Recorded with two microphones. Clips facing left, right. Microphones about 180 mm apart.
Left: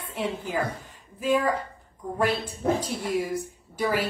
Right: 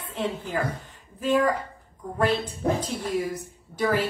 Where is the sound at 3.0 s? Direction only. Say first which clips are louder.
Left 1 dB; 10° left (ahead or behind).